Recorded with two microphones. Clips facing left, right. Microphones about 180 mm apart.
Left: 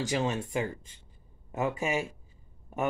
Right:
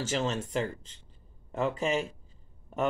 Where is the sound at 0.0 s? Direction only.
15° left (ahead or behind).